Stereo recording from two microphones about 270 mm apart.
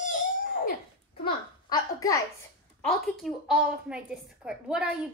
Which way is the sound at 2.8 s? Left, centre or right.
Centre.